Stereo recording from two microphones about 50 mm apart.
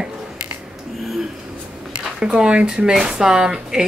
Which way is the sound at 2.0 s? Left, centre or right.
Centre.